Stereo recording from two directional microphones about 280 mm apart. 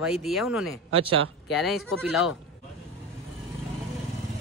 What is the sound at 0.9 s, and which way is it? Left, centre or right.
Speech, centre.